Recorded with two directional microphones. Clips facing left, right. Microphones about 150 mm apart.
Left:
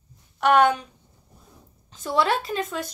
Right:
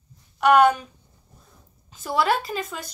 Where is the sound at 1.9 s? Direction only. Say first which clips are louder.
Even; 5° right (ahead or behind).